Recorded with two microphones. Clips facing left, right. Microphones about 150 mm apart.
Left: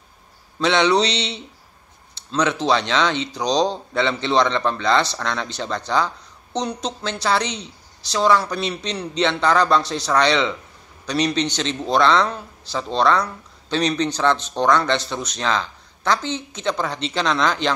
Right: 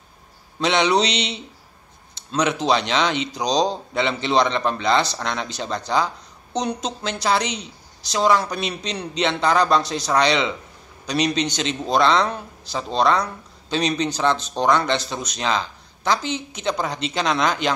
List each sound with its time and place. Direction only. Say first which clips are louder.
0.6 s speech: left 1 dB; 15° right (ahead or behind)